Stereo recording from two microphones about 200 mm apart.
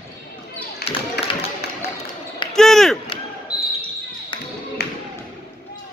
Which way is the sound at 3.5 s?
20° left (ahead or behind).